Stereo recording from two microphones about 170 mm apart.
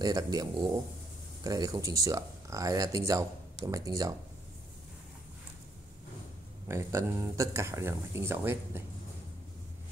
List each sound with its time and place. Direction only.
0.0 s speech: 20° right (ahead or behind)
6.7 s speech: 15° right (ahead or behind)